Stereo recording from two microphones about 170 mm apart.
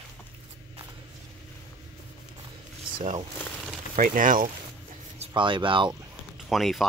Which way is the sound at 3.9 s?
50° right (ahead or behind).